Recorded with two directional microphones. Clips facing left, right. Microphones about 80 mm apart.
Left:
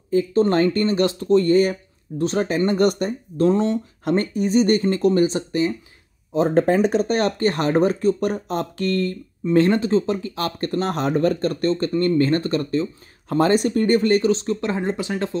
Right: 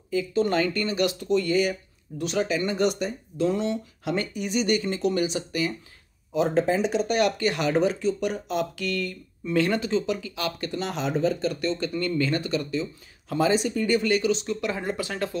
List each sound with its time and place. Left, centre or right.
0.1 s speech: left
6.6 s speech: left